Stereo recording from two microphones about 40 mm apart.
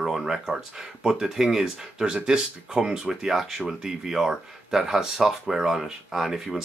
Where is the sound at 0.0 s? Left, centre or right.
Centre.